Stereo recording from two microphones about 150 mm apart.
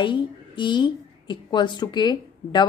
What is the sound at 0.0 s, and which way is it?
A woman's voice, 30° left (ahead or behind).